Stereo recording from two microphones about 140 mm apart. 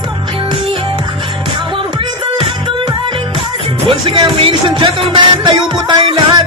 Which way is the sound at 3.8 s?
40° right (ahead or behind).